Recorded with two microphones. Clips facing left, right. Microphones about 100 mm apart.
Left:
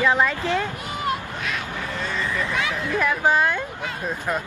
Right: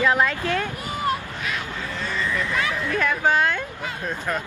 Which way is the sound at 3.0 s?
5° left (ahead or behind).